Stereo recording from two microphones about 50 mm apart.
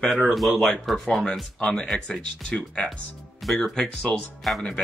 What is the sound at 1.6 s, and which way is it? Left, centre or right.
A man's voice, centre.